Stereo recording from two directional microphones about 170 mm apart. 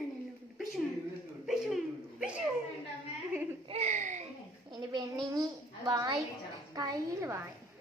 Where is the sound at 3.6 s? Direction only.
40° right (ahead or behind).